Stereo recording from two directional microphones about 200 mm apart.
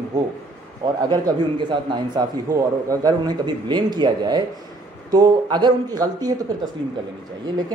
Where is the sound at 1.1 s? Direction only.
20° right (ahead or behind).